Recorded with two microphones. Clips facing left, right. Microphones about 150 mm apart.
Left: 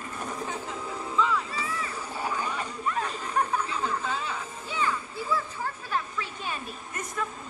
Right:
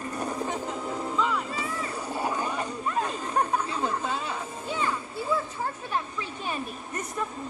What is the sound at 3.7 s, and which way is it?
Speech, 45° right (ahead or behind).